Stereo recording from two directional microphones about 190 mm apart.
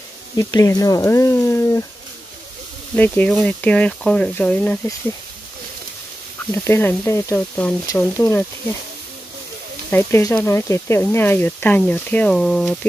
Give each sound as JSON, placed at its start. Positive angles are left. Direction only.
{"t": 0.4, "sound": "speech", "side_deg": 15}
{"t": 3.0, "sound": "speech", "side_deg": 10}
{"t": 6.4, "sound": "speech", "side_deg": 10}
{"t": 9.8, "sound": "speech", "side_deg": 10}